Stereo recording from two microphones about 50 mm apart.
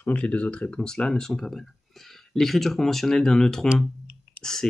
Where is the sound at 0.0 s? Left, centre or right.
Left.